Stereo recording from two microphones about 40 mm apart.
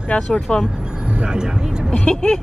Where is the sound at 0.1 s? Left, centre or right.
Left.